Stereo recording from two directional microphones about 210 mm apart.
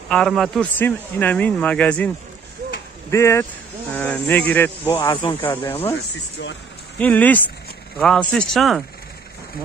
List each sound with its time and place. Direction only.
0.1 s speech: centre (ahead or behind)
3.1 s speech: 15° left (ahead or behind)
4.9 s speech: 25° left (ahead or behind)
5.3 s speech: 10° left (ahead or behind)
7.0 s speech: 5° left (ahead or behind)